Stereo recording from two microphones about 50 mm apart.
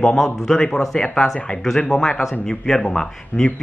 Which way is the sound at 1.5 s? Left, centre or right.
Left.